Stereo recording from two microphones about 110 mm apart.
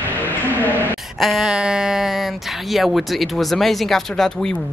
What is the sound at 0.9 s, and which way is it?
Speech, centre (ahead or behind).